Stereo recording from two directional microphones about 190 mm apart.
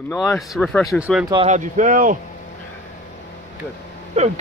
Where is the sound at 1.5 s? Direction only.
40° right (ahead or behind).